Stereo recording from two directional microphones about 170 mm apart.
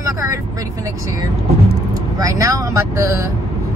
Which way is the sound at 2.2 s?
20° right (ahead or behind).